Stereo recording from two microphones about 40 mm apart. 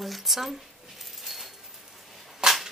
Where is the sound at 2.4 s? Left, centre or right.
Centre.